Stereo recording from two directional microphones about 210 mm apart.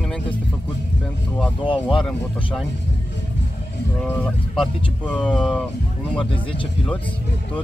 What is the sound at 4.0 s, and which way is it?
Speech, 5° left (ahead or behind).